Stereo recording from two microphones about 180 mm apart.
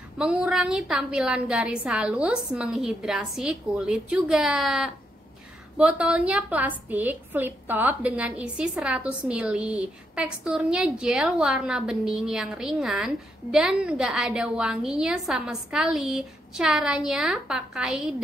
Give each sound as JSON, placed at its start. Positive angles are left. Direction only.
{"t": 0.2, "sound": "a woman's voice", "side_deg": -5}